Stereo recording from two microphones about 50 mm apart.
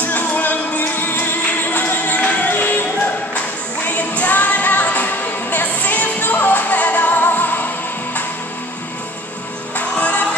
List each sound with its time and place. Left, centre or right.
0.0 s music: left
9.8 s music: left